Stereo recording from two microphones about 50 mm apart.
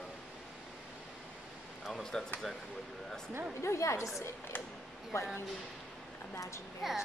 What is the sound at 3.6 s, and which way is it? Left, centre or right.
Speech, left.